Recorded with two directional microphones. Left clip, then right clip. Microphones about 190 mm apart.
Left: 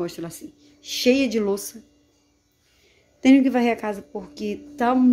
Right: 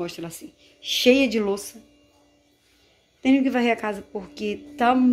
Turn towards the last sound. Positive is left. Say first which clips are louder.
# right 1 dB
turn(degrees=10)  # may be behind; listen again after turning